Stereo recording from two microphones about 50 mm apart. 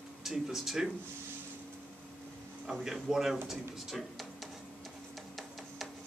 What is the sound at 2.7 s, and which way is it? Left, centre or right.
Speech, centre.